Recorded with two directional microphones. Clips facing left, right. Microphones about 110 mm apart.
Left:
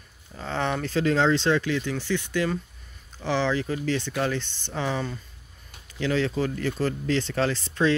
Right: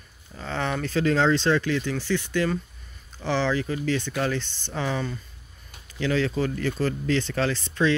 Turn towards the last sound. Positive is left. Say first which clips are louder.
# even
turn(degrees=35)  # may be behind; listen again after turning